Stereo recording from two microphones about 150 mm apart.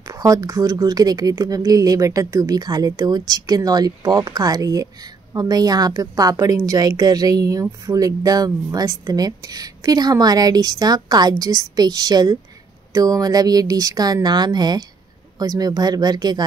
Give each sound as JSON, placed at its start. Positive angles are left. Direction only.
{"t": 0.1, "sound": "speech", "side_deg": -25}